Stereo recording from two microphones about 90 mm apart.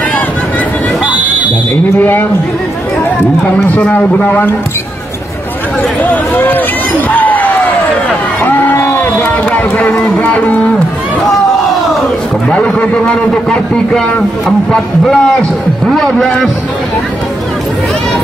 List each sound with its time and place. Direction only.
1.0 s buzzer: 15° right (ahead or behind)
1.9 s a man's voice: 25° left (ahead or behind)
3.6 s a man's voice: 20° left (ahead or behind)
6.3 s a man's voice: 20° left (ahead or behind)
7.1 s basketball bounce: 20° left (ahead or behind)
8.5 s a man's voice: 20° left (ahead or behind)
12.4 s a man's voice: 10° left (ahead or behind)